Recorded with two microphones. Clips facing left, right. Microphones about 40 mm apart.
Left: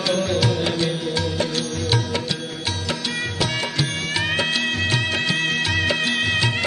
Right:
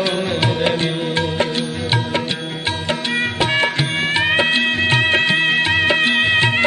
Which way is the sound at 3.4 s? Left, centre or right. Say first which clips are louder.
Right 5 dB; right.